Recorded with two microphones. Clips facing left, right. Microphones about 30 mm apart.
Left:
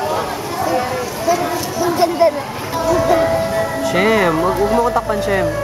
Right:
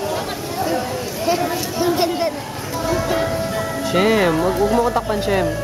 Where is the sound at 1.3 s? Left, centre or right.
Right.